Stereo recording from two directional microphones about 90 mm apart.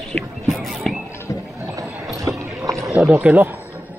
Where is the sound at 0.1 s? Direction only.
5° left (ahead or behind).